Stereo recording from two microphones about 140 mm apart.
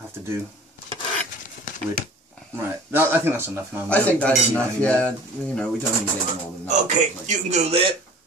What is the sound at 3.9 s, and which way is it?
Speech, 10° left (ahead or behind).